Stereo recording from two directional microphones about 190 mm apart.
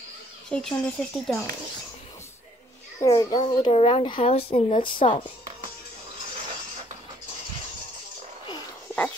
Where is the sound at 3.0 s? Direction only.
20° left (ahead or behind).